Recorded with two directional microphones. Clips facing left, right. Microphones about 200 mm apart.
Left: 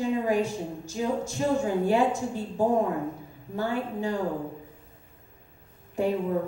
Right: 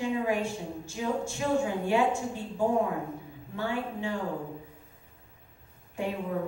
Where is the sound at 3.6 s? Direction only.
40° left (ahead or behind).